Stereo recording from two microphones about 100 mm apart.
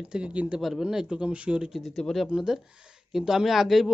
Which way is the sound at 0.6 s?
Centre (ahead or behind).